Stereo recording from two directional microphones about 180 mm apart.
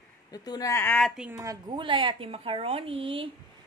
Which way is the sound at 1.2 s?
20° right (ahead or behind).